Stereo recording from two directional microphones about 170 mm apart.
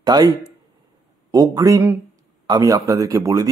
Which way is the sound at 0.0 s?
25° right (ahead or behind).